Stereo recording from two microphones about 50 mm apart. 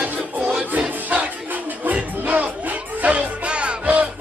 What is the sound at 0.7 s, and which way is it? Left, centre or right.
Battle cry, right.